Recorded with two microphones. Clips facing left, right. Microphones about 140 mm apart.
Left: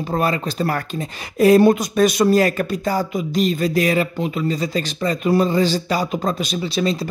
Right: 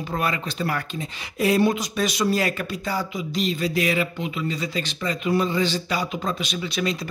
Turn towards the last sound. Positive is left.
turn(degrees=30)  # may be behind; listen again after turning